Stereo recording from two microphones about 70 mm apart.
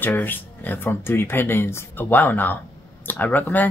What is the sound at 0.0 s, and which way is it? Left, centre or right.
Speech, left.